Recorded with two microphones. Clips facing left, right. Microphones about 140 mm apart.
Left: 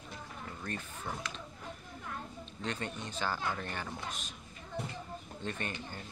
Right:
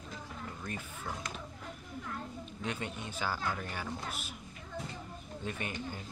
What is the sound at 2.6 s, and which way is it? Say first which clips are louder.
Speech: even; 10° right (ahead or behind).